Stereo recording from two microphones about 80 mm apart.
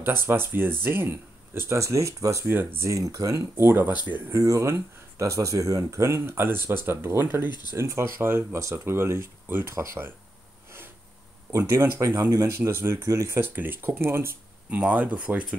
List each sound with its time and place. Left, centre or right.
0.3 s speech: right
2.4 s speech: right
2.9 s speech: right
11.5 s speech: right
12.5 s speech: right
13.4 s speech: right
14.7 s speech: centre